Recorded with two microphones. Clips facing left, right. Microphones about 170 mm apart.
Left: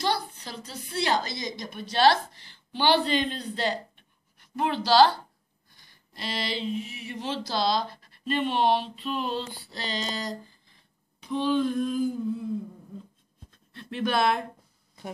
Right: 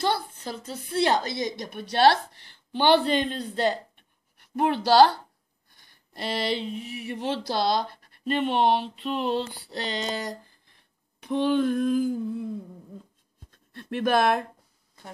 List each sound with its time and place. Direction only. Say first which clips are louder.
0.0 s a sound: right 2 dB; 55° right (ahead or behind)
0.7 s speech: right 4 dB; 55° right (ahead or behind)
6.1 s speech: right 5 dB; 55° right (ahead or behind)
13.8 s speech: right 3 dB; 50° right (ahead or behind)